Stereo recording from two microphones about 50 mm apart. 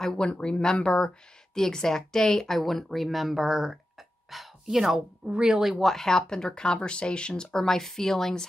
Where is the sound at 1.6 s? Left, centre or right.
Centre.